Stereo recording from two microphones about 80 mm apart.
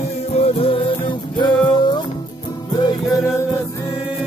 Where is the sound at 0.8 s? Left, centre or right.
Left.